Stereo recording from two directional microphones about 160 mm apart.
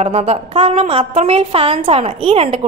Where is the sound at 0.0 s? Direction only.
40° right (ahead or behind).